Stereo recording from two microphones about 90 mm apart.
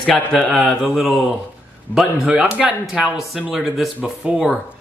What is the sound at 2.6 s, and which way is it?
Speech, centre (ahead or behind).